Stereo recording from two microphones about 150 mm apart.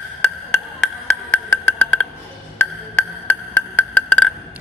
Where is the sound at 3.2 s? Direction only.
10° left (ahead or behind).